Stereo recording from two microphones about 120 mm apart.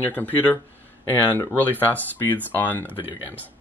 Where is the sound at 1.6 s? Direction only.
15° left (ahead or behind).